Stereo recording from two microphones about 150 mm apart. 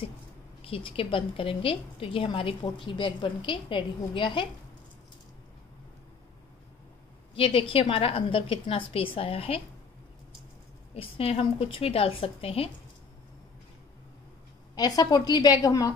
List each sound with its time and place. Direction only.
0.6 s a woman's voice: 35° left (ahead or behind)
7.3 s a woman's voice: 35° left (ahead or behind)
11.0 s a woman's voice: 40° left (ahead or behind)
14.8 s a woman's voice: 25° left (ahead or behind)